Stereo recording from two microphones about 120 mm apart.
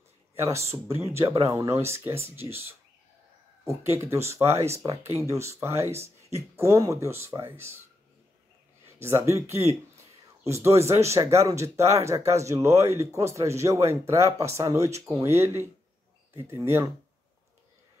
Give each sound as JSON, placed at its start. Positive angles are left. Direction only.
{"t": 0.8, "sound": "speech", "side_deg": -20}
{"t": 8.8, "sound": "a sound", "side_deg": -25}
{"t": 9.5, "sound": "speech", "side_deg": -25}
{"t": 10.8, "sound": "speech", "side_deg": -25}